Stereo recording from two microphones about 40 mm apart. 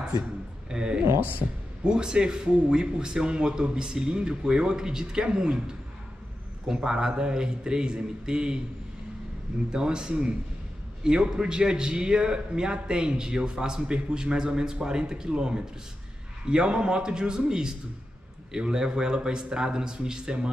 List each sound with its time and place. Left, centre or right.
0.7 s a man's voice: right
9.7 s a man's voice: centre